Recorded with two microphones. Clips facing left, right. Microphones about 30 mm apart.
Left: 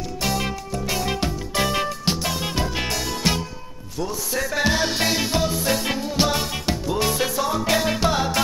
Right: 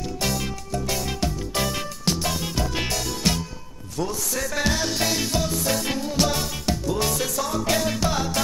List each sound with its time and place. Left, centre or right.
0.4 s music: left